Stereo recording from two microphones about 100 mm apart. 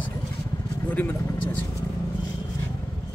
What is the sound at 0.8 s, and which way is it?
Vehicle, 15° left (ahead or behind).